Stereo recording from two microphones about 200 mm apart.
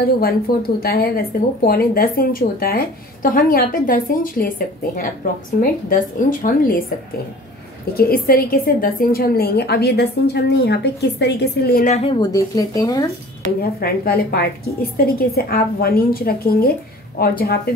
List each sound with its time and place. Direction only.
0.0 s speech: 50° left (ahead or behind)
7.9 s speech: 50° left (ahead or behind)
11.9 s speech: 30° left (ahead or behind)
13.6 s speech: 50° left (ahead or behind)